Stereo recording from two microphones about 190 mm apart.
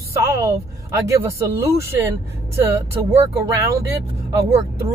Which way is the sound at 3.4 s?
15° right (ahead or behind).